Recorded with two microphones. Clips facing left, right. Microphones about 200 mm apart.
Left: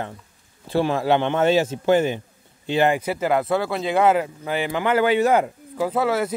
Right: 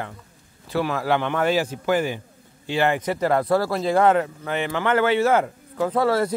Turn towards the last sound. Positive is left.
turn(degrees=5)  # may be behind; listen again after turning